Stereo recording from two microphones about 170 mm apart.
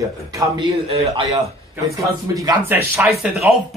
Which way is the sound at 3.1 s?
5° right (ahead or behind).